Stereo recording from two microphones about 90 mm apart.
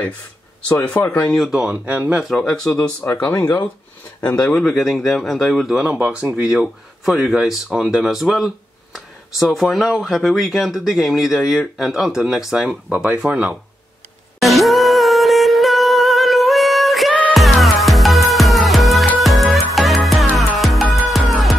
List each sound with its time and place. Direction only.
0.6 s speech: 15° left (ahead or behind)
1.4 s speech: 10° right (ahead or behind)
2.2 s speech: 5° left (ahead or behind)
2.7 s speech: 20° left (ahead or behind); by 13.6 s 15° right (ahead or behind)
14.4 s music: centre (ahead or behind)